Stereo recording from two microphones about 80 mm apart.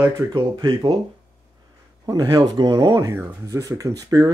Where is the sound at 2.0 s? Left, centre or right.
Right.